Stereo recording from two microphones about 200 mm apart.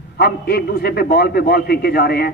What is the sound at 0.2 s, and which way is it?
A man's voice, 55° left (ahead or behind).